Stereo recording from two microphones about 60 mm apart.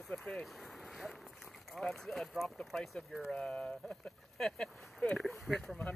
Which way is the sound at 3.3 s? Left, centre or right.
Centre.